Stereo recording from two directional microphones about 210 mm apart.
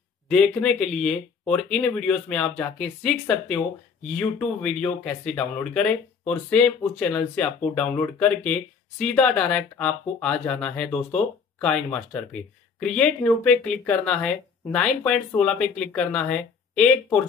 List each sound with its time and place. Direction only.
0.3 s speech: 5° left (ahead or behind)